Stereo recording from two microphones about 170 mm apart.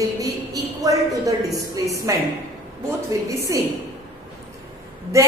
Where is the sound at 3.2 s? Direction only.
20° right (ahead or behind).